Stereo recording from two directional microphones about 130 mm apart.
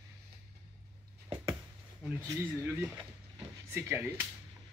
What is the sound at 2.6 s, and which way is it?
Speech, 10° right (ahead or behind).